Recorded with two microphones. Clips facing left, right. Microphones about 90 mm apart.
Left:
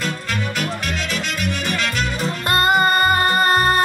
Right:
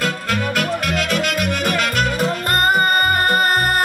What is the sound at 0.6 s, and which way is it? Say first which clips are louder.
Music: right 4 dB; 50° right (ahead or behind).